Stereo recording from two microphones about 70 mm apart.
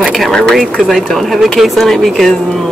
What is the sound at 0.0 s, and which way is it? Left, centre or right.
Speech, centre.